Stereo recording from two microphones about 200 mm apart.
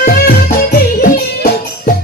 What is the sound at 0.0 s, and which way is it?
Music, 45° left (ahead or behind).